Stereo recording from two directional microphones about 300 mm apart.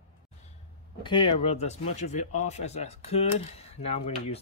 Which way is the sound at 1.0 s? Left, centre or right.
Centre.